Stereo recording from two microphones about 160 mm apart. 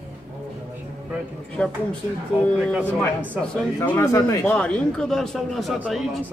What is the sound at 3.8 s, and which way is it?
Speech, 15° left (ahead or behind).